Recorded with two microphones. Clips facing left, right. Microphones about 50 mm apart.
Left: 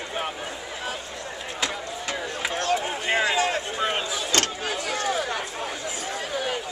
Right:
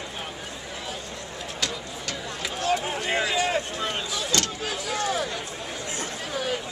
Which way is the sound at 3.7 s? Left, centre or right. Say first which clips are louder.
Left 3 dB; centre.